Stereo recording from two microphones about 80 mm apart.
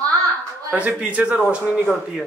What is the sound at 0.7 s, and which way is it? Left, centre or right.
Speech, centre.